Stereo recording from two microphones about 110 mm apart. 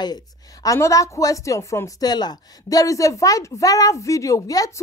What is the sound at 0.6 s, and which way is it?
A woman's voice, 30° left (ahead or behind).